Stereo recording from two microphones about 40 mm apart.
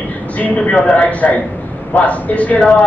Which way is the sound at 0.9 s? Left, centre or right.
Left.